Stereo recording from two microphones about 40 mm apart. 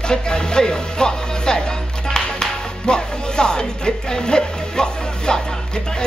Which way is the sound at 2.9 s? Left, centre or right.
Centre.